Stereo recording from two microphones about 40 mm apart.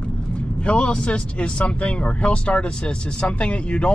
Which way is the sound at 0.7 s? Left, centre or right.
Left.